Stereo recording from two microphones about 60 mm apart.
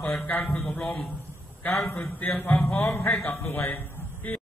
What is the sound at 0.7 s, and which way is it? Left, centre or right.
Speech, centre.